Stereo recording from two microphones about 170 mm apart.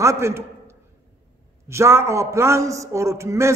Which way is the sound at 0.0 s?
15° right (ahead or behind).